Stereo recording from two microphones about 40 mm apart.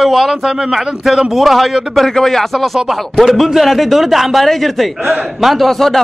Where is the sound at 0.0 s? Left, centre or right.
Centre.